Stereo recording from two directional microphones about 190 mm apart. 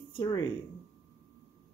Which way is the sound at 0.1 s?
20° left (ahead or behind).